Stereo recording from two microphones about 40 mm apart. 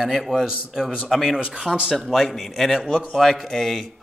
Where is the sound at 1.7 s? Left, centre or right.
Left.